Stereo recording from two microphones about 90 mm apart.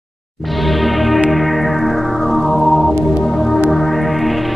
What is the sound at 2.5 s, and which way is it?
Music, centre (ahead or behind).